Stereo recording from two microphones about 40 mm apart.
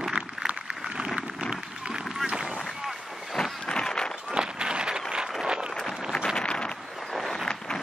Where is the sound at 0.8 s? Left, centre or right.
Right.